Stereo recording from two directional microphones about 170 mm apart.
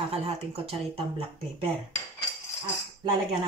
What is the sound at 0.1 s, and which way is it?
A woman's voice, 35° right (ahead or behind).